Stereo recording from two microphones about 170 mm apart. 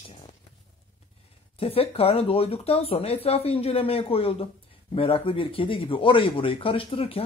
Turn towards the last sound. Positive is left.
turn(degrees=35)  # may be behind; listen again after turning